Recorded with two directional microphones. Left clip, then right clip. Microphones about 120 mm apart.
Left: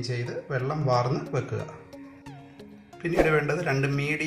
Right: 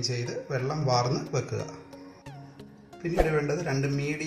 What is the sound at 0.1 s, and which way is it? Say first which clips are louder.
Speech: left 1 dB; 5° right (ahead or behind).